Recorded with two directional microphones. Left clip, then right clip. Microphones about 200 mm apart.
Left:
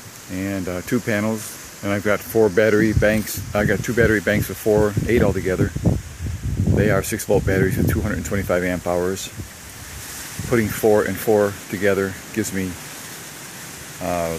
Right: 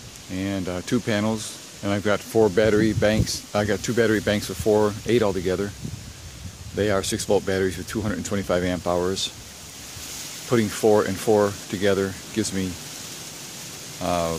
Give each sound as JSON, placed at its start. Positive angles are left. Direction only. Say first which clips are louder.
{"t": 0.4, "sound": "speech", "louder": "left 2 dB", "side_deg": -5}
{"t": 6.8, "sound": "speech", "louder": "left 2 dB", "side_deg": -5}
{"t": 10.5, "sound": "speech", "louder": "left 2 dB", "side_deg": -5}
{"t": 14.0, "sound": "speech", "louder": "left 1 dB", "side_deg": -15}